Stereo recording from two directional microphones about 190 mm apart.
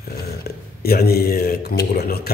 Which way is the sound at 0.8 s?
55° left (ahead or behind).